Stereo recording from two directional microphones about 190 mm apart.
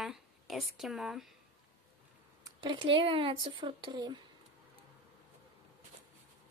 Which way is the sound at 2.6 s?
25° right (ahead or behind).